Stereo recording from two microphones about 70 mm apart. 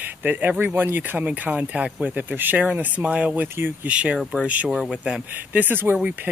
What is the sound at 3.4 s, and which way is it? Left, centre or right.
Speech, right.